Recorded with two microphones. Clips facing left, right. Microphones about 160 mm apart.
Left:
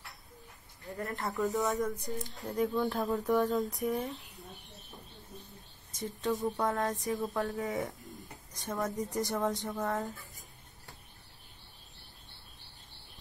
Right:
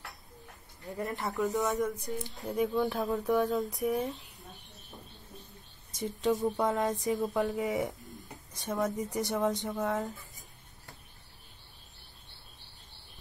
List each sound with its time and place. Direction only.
0.9 s speech: 20° right (ahead or behind)
1.2 s speech: centre (ahead or behind)
5.9 s speech: 15° right (ahead or behind)
8.6 s speech: centre (ahead or behind)